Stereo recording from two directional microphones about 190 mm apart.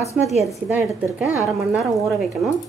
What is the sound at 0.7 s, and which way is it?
A woman's voice, 10° right (ahead or behind).